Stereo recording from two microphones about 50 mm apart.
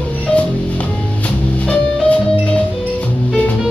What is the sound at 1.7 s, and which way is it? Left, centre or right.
Music, left.